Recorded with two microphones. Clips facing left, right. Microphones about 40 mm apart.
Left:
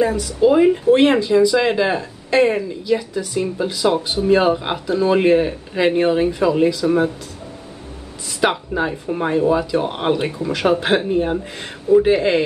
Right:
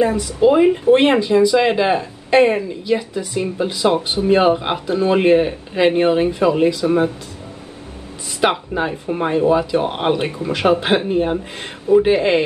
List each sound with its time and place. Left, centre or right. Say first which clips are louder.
0.0 s speech: right 1 dB; right
8.4 s speech: right 1 dB; centre